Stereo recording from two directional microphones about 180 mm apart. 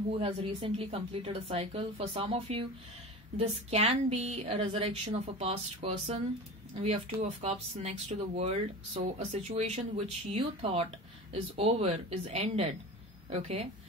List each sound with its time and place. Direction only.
0.2 s speech: 30° right (ahead or behind)